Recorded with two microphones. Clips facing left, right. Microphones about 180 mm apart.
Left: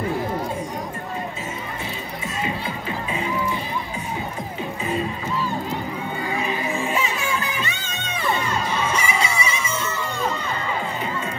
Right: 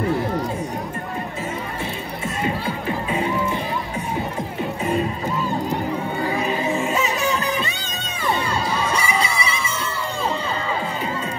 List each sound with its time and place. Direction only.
6.2 s music: 40° right (ahead or behind)
8.4 s children shouting: 35° right (ahead or behind)